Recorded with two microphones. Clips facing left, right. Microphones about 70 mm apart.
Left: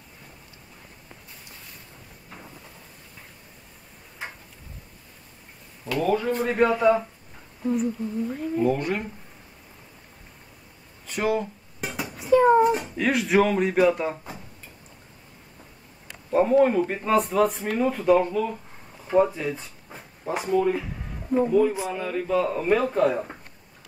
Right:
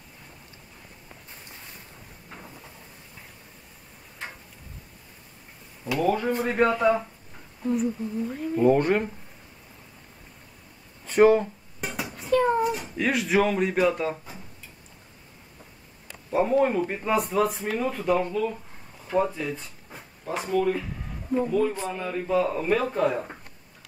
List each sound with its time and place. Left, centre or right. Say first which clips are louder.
4.2 s a sound: left 1 dB; centre
5.9 s speech: even; centre
8.7 s speech: right 5 dB; right
11.1 s speech: right 7 dB; right
11.8 s a sound: left 1 dB; centre
12.3 s a sound: left 5 dB; centre
12.8 s speech: left 2 dB; centre
16.3 s a man's voice: left 3 dB; centre
21.4 s a man's voice: left 4 dB; centre